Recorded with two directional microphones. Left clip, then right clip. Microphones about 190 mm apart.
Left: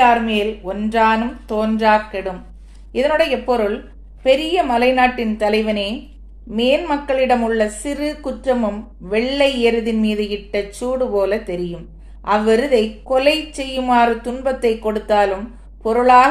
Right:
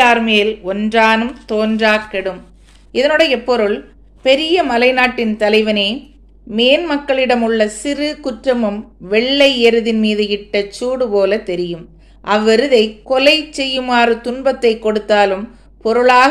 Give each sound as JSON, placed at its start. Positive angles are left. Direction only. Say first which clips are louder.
{"t": 0.0, "sound": "a woman's voice", "louder": "right 3 dB", "side_deg": -30}